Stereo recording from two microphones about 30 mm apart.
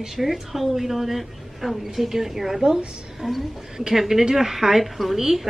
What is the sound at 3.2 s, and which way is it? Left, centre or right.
Speech, right.